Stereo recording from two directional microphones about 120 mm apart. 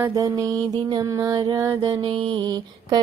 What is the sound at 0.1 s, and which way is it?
Mantra, 30° right (ahead or behind).